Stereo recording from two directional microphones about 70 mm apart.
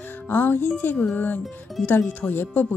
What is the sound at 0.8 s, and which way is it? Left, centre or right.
Speech, left.